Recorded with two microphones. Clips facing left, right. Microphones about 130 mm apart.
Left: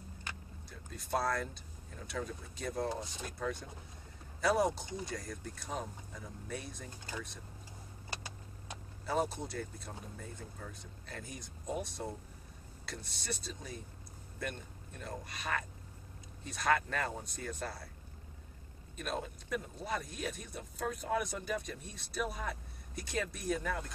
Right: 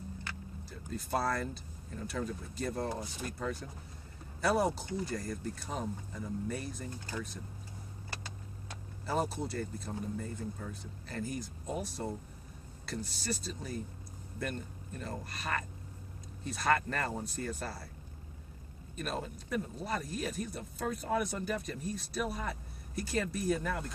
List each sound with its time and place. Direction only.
0.7 s speech: centre (ahead or behind)
8.1 s vehicle: 15° left (ahead or behind)
9.0 s speech: centre (ahead or behind)
18.9 s speech: centre (ahead or behind)